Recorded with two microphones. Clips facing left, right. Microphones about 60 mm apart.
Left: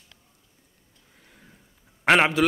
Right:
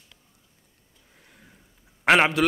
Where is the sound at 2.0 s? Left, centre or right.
Centre.